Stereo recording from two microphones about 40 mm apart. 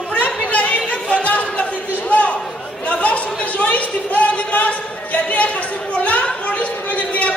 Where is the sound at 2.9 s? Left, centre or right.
Left.